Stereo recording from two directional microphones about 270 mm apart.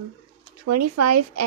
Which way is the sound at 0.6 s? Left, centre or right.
Right.